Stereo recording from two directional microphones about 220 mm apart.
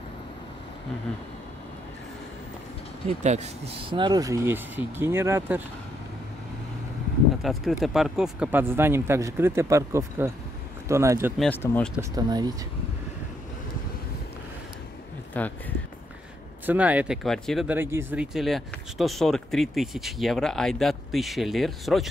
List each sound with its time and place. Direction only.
3.1 s speech: 30° right (ahead or behind); by 5.6 s 10° right (ahead or behind)
7.4 s speech: centre (ahead or behind)
11.3 s speech: 5° left (ahead or behind)
12.2 s speech: 20° right (ahead or behind)
15.3 s speech: 5° left (ahead or behind)
16.6 s speech: 5° right (ahead or behind)